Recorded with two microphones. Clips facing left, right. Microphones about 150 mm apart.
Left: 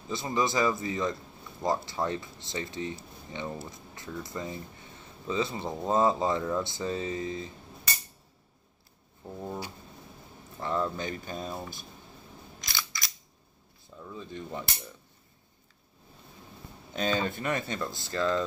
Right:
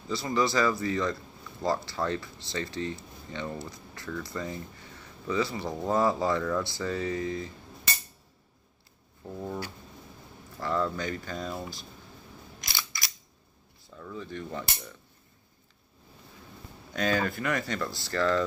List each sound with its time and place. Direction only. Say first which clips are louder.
0.1 s speech: right 2 dB; 20° left (ahead or behind)
10.6 s speech: right 1 dB; 20° left (ahead or behind)
13.8 s speech: right 2 dB; 20° left (ahead or behind)
16.9 s speech: right 1 dB; 20° left (ahead or behind)